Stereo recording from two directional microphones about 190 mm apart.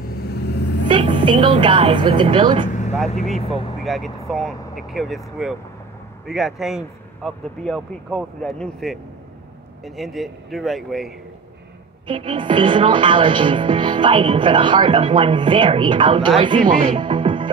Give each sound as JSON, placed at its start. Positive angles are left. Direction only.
{"t": 0.8, "sound": "a woman's voice", "side_deg": -25}
{"t": 2.7, "sound": "vehicle", "side_deg": 40}
{"t": 3.8, "sound": "speech", "side_deg": 0}
{"t": 12.1, "sound": "a woman's voice", "side_deg": -25}
{"t": 16.8, "sound": "music", "side_deg": -25}